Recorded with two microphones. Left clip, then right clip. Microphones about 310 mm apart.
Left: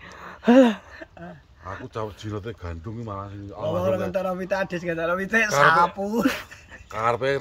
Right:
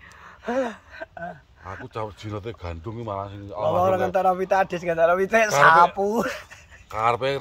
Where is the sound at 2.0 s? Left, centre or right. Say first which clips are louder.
Right 1 dB; centre.